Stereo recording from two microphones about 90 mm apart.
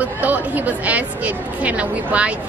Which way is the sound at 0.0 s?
20° right (ahead or behind).